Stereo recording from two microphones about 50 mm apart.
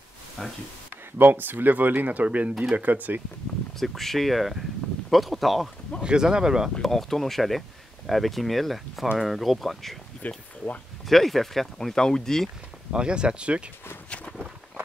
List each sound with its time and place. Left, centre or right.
0.4 s speech: centre
1.1 s speech: right
3.8 s speech: centre
6.0 s speech: centre
6.8 s speech: centre
10.2 s speech: left
11.1 s speech: centre
12.9 s speech: centre